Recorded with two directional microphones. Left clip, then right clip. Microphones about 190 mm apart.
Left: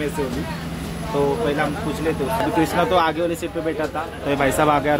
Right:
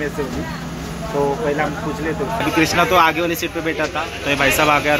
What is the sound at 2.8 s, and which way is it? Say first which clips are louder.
Speech: right 5 dB; centre (ahead or behind).